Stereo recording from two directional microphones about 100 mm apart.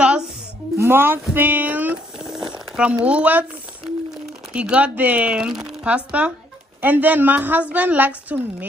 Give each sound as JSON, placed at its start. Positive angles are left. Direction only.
{"t": 0.7, "sound": "speech", "side_deg": -20}
{"t": 2.2, "sound": "a sound", "side_deg": -5}
{"t": 3.0, "sound": "speech", "side_deg": -15}
{"t": 4.5, "sound": "speech", "side_deg": -10}